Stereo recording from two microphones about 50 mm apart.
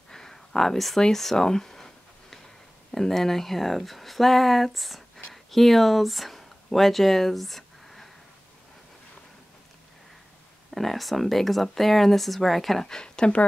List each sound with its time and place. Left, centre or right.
0.1 s a sound: centre
1.0 s speech: centre
2.9 s speech: centre
10.7 s speech: centre
12.8 s speech: centre